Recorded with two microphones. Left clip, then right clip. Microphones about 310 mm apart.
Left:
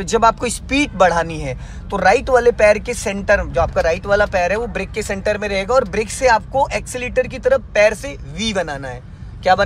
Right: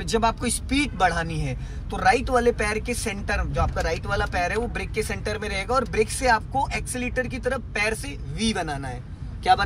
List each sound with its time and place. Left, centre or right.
0.0 s a man's voice: centre